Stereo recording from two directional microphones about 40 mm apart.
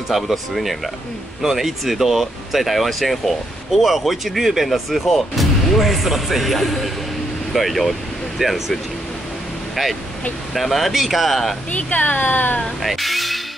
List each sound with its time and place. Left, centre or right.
0.1 s speech: centre
10.5 s speech: centre
11.7 s speech: left
12.8 s speech: centre